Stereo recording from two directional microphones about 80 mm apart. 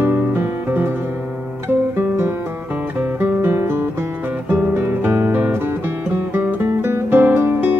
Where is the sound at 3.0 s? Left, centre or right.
Right.